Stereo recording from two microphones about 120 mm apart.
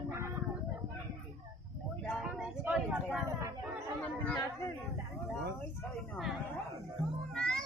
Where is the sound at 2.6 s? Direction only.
15° right (ahead or behind).